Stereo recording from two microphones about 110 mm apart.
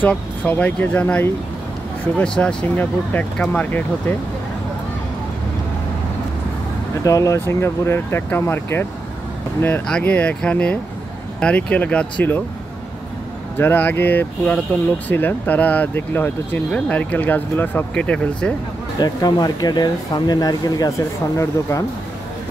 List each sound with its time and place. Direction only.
0.1 s speech: 15° left (ahead or behind)
7.0 s speech: 30° left (ahead or behind)
9.8 s speech: 10° left (ahead or behind)
13.6 s speech: 20° left (ahead or behind)
18.9 s speech: 40° left (ahead or behind)